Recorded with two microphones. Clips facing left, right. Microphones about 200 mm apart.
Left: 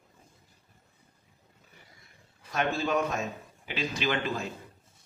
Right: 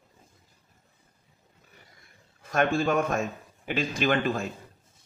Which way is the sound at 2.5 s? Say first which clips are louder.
Right 4 dB; 50° right (ahead or behind).